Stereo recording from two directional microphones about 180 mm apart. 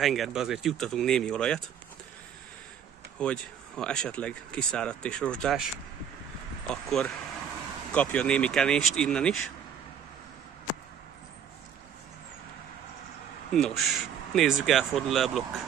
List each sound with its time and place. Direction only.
0.0 s speech: centre (ahead or behind)
3.2 s speech: 5° left (ahead or behind)
6.7 s speech: 5° left (ahead or behind)
13.5 s speech: 5° left (ahead or behind)